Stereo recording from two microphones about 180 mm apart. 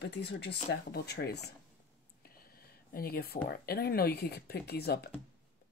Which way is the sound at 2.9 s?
60° left (ahead or behind).